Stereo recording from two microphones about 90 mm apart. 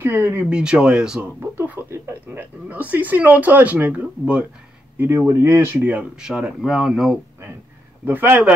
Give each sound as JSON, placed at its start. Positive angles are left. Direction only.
{"t": 0.0, "sound": "speech", "side_deg": -25}
{"t": 0.5, "sound": "speech", "side_deg": -10}
{"t": 1.4, "sound": "speech", "side_deg": -25}
{"t": 2.7, "sound": "speech", "side_deg": -20}
{"t": 4.9, "sound": "speech", "side_deg": -25}
{"t": 8.0, "sound": "speech", "side_deg": -20}